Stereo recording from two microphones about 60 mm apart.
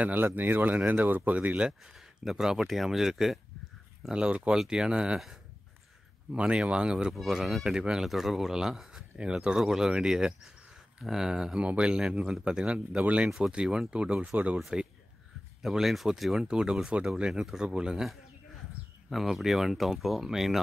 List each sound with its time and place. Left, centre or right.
0.0 s speech: right; by 2.0 s centre
2.0 s speech: centre
4.1 s speech: centre
6.3 s speech: centre
7.2 s speech: centre; by 14.6 s right
14.6 s speech: centre
19.0 s speech: centre